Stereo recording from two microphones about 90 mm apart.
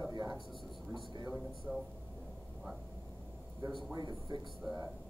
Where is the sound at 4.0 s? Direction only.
50° right (ahead or behind).